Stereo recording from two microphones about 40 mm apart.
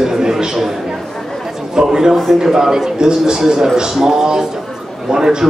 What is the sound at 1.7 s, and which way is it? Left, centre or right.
Speech, centre.